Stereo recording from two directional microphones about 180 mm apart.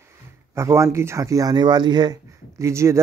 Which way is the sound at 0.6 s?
15° right (ahead or behind).